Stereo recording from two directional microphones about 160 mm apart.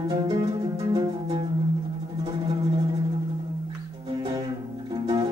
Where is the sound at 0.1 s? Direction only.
25° right (ahead or behind).